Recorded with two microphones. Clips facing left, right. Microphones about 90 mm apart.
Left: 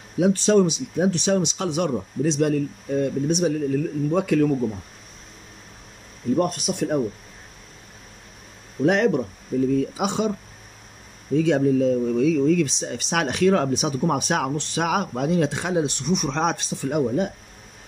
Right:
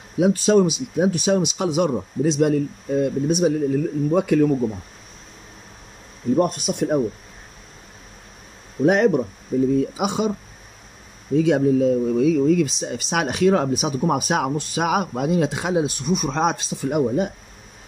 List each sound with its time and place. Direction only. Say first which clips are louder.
0.2 s speech: right 1 dB; 10° right (ahead or behind)
6.3 s speech: right 2 dB; 20° right (ahead or behind)
8.8 s speech: right 3 dB; 20° right (ahead or behind)
11.3 s speech: right 2 dB; 15° right (ahead or behind)